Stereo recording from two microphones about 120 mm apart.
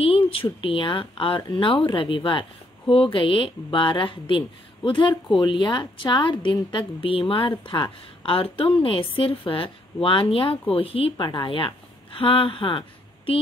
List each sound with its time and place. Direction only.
0.0 s a woman's voice: 50° left (ahead or behind)